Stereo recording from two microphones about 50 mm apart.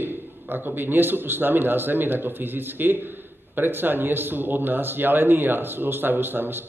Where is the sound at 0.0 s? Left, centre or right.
Right.